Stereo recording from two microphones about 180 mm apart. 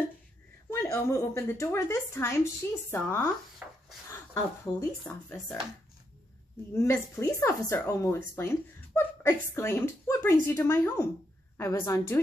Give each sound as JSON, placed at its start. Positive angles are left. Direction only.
{"t": 0.7, "sound": "speech", "side_deg": 15}
{"t": 3.6, "sound": "a sound", "side_deg": -10}
{"t": 4.1, "sound": "speech", "side_deg": 15}
{"t": 6.7, "sound": "speech", "side_deg": 15}